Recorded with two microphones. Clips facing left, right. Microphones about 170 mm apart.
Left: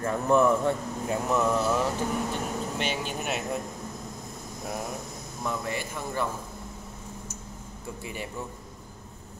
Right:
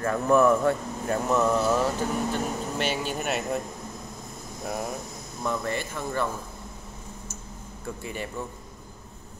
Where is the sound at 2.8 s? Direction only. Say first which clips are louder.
Right 3 dB; 45° right (ahead or behind).